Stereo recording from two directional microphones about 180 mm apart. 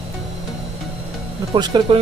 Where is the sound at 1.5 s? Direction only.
25° right (ahead or behind).